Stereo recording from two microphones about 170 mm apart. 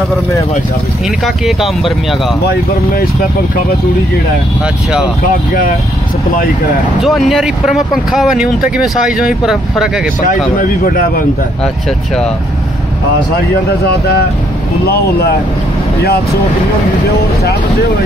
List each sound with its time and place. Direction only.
1.2 s speech: centre (ahead or behind)
5.2 s speech: 55° left (ahead or behind)
7.0 s speech: centre (ahead or behind)
10.2 s speech: 55° left (ahead or behind)
14.9 s speech: 65° left (ahead or behind)